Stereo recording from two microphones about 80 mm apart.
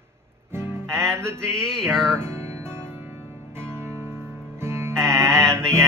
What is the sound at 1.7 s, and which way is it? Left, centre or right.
Music, centre.